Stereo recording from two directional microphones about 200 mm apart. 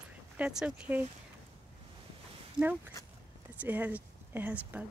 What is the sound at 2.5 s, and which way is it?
Speech, 10° right (ahead or behind).